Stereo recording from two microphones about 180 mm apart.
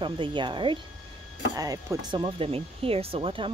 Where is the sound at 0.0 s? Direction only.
25° right (ahead or behind).